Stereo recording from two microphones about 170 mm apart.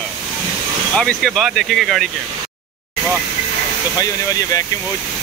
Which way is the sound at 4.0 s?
20° left (ahead or behind).